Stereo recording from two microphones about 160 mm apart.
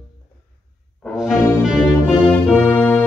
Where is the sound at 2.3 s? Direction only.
10° left (ahead or behind).